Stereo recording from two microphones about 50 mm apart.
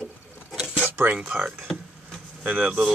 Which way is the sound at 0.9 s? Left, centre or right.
Right.